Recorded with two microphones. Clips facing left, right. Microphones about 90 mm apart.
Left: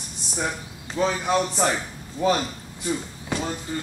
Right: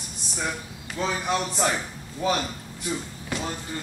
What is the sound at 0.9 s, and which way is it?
Speech, 15° left (ahead or behind).